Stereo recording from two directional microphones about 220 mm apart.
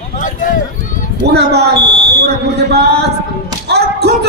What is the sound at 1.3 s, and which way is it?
A man's voice, 50° right (ahead or behind).